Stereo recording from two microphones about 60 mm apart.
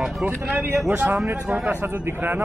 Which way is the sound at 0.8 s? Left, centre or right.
Right.